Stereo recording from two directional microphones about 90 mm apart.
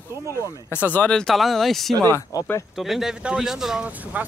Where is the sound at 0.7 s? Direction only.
20° left (ahead or behind).